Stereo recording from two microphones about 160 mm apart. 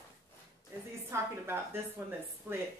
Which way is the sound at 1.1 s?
15° right (ahead or behind).